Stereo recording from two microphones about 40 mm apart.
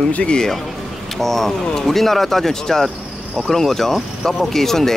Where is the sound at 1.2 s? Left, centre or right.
Centre.